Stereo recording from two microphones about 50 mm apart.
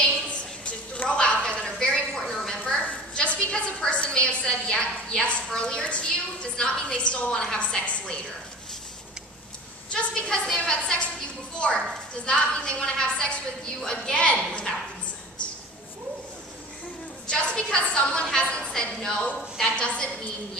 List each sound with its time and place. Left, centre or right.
0.0 s a sound: left
6.5 s a woman's voice: centre
9.9 s a woman's voice: centre
17.3 s a woman's voice: left